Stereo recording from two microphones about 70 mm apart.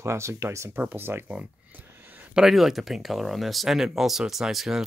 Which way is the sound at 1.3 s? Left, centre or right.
Right.